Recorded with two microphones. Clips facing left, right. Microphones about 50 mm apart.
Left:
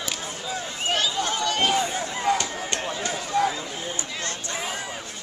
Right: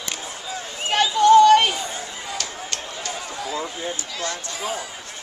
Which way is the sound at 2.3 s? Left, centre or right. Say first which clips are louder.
Left 4 dB; left.